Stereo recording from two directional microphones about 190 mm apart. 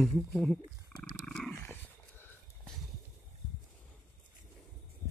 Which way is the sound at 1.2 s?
5° left (ahead or behind).